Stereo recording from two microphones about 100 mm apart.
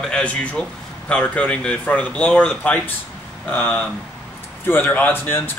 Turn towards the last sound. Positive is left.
turn(degrees=20)  # may be behind; listen again after turning